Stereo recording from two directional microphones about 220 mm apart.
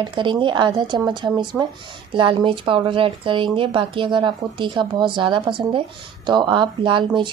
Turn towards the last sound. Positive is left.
turn(degrees=-20)  # may be behind; listen again after turning